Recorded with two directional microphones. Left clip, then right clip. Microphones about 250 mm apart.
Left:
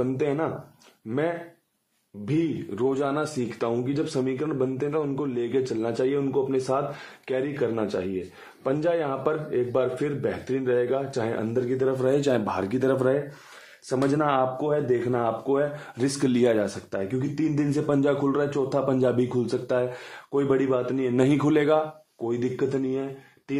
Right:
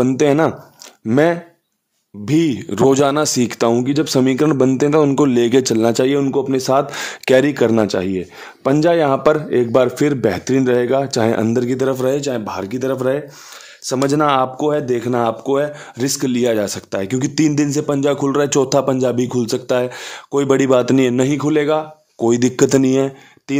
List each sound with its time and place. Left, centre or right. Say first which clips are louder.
0.0 s speech: right 12 dB; right
12.2 s speech: right 3 dB; centre; by 15.7 s right
16.0 s speech: right 5 dB; right
21.2 s a man's voice: right 5 dB; right
22.2 s speech: right 12 dB; right